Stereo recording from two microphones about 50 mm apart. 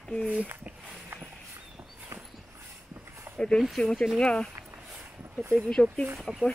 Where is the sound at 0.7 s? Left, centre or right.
Right.